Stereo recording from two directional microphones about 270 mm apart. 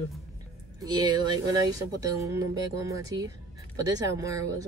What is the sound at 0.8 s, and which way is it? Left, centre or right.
Speech, centre.